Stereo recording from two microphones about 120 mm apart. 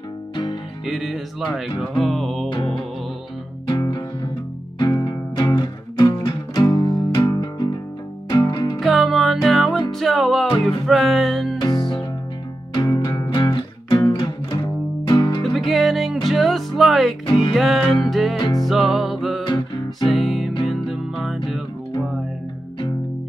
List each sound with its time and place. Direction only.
0.8 s music: centre (ahead or behind)
2.5 s music: 45° left (ahead or behind)
8.7 s music: centre (ahead or behind)
11.6 s music: 35° left (ahead or behind)
15.4 s music: centre (ahead or behind)
17.3 s music: 45° left (ahead or behind)
17.6 s music: centre (ahead or behind)
18.4 s music: 30° left (ahead or behind)
18.7 s music: centre (ahead or behind)
19.4 s music: 35° left (ahead or behind)
20.1 s music: centre (ahead or behind)